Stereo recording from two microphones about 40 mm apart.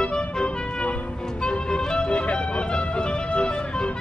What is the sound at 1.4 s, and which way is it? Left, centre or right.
Music, left.